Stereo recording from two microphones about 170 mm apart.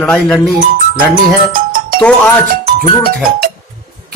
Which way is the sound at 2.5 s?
65° right (ahead or behind).